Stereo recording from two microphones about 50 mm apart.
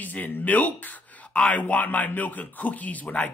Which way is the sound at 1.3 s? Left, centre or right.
Left.